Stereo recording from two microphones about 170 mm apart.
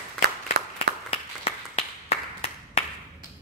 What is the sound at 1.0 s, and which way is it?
Clapping, 35° left (ahead or behind).